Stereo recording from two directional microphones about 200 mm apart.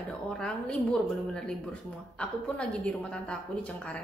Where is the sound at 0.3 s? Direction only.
5° left (ahead or behind).